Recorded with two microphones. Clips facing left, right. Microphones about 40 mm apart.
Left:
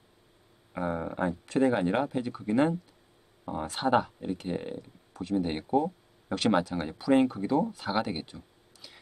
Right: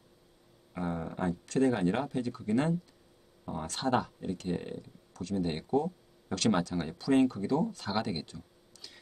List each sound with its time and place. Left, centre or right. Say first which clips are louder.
0.7 s speech: left 4 dB; left